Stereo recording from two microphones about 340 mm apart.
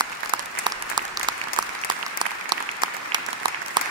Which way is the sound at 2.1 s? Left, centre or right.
Centre.